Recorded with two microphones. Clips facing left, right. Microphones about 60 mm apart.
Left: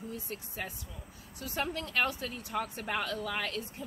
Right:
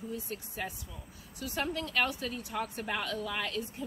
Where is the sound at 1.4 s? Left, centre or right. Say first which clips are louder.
Right 1 dB; left.